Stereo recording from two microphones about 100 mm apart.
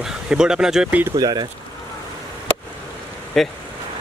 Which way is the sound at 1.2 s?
40° right (ahead or behind).